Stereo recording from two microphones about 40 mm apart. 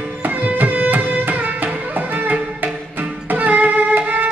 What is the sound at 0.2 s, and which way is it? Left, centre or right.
Music, right.